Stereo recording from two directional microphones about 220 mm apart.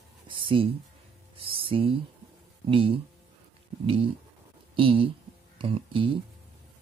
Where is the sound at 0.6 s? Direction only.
25° right (ahead or behind).